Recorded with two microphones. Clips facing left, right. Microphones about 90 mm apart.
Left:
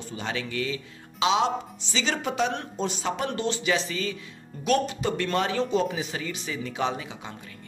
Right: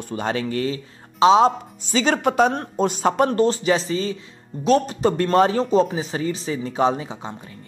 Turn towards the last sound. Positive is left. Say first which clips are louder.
# right 6 dB
turn(degrees=-30)  # may be behind; listen again after turning